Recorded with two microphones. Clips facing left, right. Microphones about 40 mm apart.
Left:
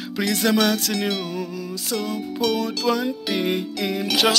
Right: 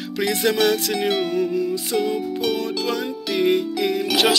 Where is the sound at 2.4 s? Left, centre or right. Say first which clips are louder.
Even; centre.